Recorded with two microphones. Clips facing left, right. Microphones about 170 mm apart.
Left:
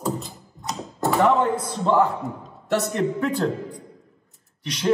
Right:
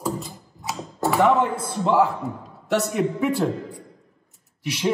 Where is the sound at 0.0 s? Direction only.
Centre (ahead or behind).